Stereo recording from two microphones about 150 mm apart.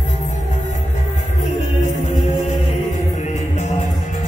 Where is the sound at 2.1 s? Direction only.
55° left (ahead or behind).